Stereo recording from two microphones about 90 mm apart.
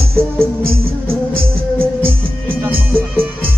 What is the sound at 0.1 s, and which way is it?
Music, 30° right (ahead or behind).